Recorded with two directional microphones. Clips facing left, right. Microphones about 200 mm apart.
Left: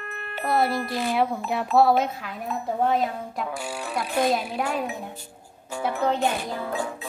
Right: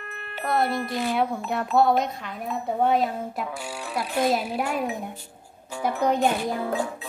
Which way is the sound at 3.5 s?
50° left (ahead or behind).